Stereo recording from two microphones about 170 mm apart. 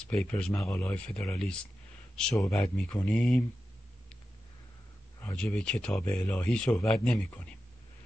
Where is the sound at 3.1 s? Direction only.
Centre (ahead or behind).